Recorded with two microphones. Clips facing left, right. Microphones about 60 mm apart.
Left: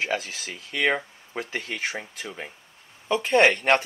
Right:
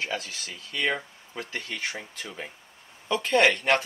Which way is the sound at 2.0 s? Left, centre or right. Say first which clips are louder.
Left 2 dB; centre.